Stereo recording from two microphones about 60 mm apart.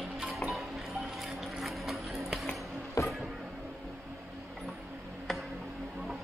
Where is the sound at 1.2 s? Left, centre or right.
Centre.